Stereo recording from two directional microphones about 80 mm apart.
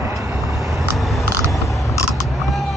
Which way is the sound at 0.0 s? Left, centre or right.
Right.